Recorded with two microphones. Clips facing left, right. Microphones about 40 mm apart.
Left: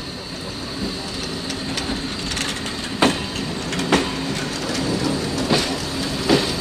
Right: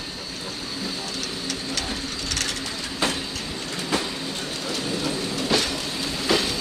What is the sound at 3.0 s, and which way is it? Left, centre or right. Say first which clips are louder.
Vehicle: left 8 dB; left.